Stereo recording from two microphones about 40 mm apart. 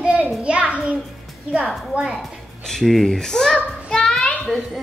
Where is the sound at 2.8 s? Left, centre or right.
Centre.